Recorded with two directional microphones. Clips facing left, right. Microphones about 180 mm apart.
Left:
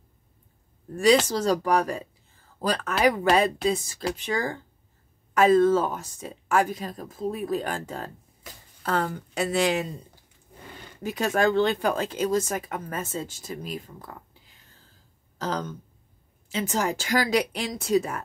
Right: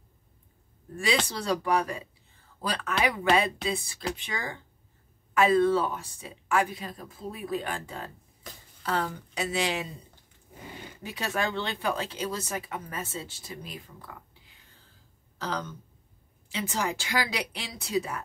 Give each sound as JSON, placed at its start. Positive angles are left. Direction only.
{"t": 1.3, "sound": "speech", "side_deg": 40}
{"t": 11.0, "sound": "speech", "side_deg": 45}
{"t": 15.3, "sound": "a sound", "side_deg": 45}
{"t": 16.5, "sound": "speech", "side_deg": 45}